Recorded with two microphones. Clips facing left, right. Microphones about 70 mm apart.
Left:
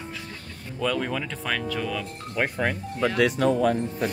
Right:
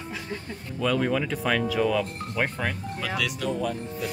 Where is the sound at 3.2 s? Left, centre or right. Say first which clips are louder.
Left 8 dB; left.